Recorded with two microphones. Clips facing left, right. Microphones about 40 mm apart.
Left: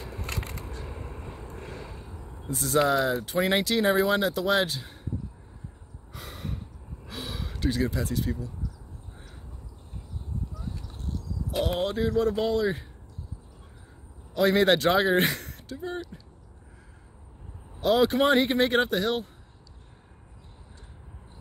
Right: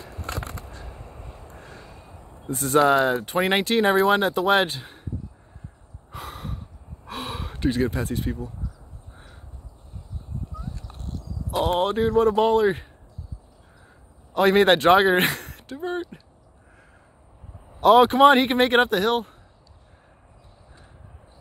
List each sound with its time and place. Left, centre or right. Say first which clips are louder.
1.3 s vehicle: left 3 dB; left
2.5 s speech: right 5 dB; right
6.1 s gasp: right 3 dB; right
7.1 s speech: right 5 dB; right
10.5 s a sound: right 1 dB; right
14.3 s speech: right 4 dB; right
17.7 s speech: right 7 dB; right